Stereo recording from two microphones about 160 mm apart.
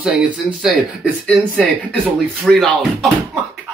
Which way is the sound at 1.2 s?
5° left (ahead or behind).